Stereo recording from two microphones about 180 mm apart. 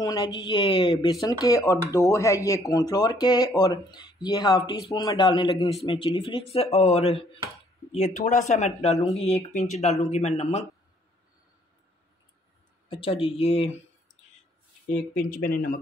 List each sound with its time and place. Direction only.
0.0 s speech: 20° left (ahead or behind); by 10.6 s 40° left (ahead or behind)
12.9 s speech: 30° left (ahead or behind)
15.1 s speech: 50° left (ahead or behind)